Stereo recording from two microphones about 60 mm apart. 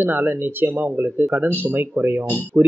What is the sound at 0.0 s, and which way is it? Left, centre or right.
Speech, right.